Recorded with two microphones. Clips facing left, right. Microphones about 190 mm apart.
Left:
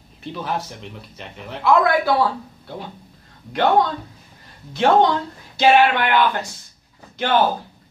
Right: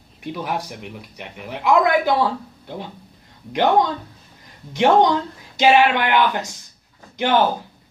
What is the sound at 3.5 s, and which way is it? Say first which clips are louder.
A man's voice: even; 20° right (ahead or behind).